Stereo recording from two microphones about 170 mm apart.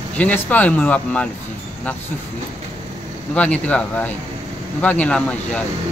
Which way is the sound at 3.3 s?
10° left (ahead or behind).